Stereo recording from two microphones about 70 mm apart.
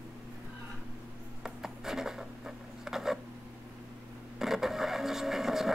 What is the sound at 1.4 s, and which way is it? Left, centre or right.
Writing, centre.